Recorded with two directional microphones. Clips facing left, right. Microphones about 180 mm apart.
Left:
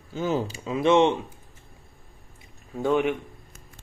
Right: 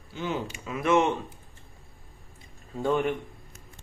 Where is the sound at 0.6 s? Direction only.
25° left (ahead or behind).